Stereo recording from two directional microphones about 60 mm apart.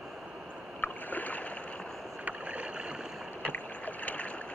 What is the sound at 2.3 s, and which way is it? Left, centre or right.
Rowboat, right.